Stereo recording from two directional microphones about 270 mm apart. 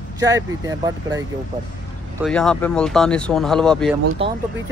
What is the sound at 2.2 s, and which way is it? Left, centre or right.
Speech, centre.